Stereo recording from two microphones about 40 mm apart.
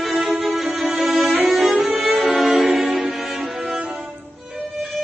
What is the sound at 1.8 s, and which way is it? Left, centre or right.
Violin, centre.